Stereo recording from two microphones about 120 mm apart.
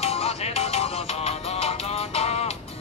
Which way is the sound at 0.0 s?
55° left (ahead or behind).